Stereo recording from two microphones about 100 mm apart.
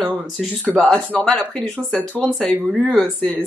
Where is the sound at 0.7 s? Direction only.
5° left (ahead or behind).